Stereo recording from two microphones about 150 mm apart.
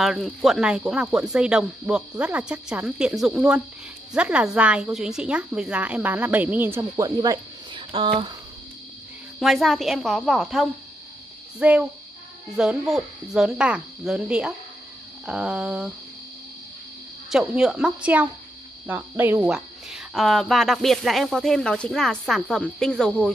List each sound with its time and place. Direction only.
0.0 s a woman's voice: centre (ahead or behind)
7.1 s speech: 30° right (ahead or behind)
9.4 s a woman's voice: centre (ahead or behind)
17.3 s speech: 5° right (ahead or behind)